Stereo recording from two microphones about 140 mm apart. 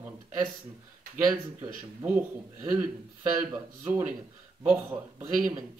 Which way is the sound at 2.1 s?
15° right (ahead or behind).